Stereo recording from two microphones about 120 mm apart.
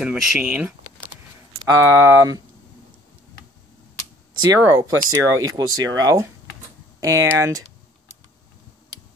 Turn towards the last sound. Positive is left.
turn(degrees=-25)  # may be behind; listen again after turning